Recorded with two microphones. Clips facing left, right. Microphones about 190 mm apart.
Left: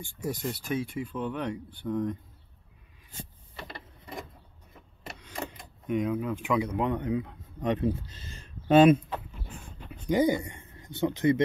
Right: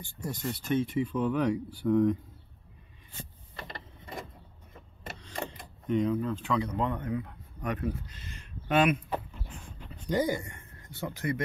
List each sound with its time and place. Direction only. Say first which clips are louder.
0.0 s speech: left 3 dB; 10° left (ahead or behind)
3.5 s a sound: even; 5° left (ahead or behind)
5.9 s speech: right 1 dB; 5° left (ahead or behind); by 9.0 s 30° left (ahead or behind)
9.8 s speech: left 4 dB; 10° left (ahead or behind)